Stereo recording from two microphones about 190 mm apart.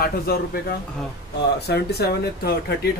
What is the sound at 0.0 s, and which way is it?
Speech, 55° left (ahead or behind).